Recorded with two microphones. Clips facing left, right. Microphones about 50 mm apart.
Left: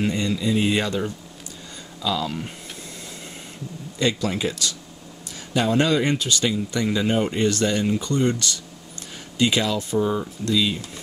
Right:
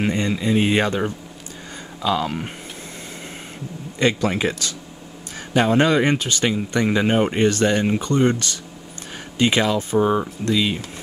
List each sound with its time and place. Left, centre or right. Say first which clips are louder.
0.0 s speech: right 2 dB; right
4.0 s speech: right 4 dB; right